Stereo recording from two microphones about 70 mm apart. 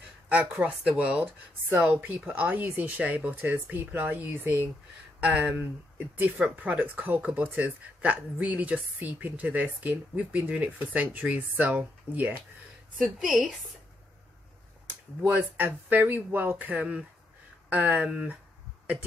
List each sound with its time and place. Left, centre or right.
0.3 s a woman's voice: centre
13.0 s a woman's voice: centre
15.2 s a woman's voice: right